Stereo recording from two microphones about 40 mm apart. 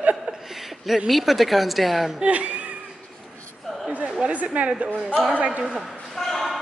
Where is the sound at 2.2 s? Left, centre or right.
Right.